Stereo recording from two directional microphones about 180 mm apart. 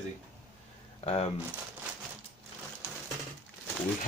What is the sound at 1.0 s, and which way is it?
Speech, 35° left (ahead or behind).